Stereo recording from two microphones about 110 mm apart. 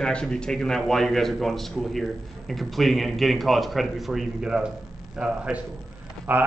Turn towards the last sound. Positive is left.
turn(degrees=-15)  # may be behind; listen again after turning